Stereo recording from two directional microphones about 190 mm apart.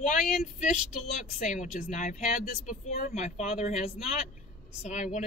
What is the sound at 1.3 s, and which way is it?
Speech, 40° left (ahead or behind).